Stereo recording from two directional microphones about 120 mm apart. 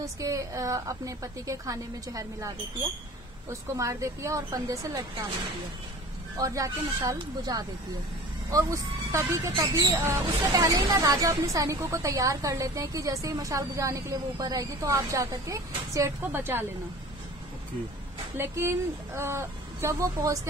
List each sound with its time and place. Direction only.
0.0 s speech: 30° right (ahead or behind)
6.3 s speech: 30° right (ahead or behind)
9.5 s speech: 40° right (ahead or behind)
9.9 s speech: 25° right (ahead or behind)
18.3 s speech: 20° right (ahead or behind)